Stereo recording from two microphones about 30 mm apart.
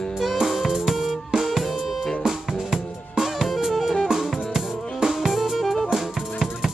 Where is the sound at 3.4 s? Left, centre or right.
Centre.